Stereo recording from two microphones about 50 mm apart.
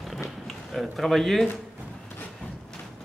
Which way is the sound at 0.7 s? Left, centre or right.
Centre.